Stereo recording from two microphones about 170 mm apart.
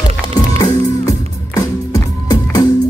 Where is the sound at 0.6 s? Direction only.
20° left (ahead or behind).